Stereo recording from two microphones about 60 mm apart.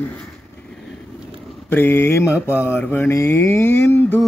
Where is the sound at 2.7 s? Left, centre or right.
Left.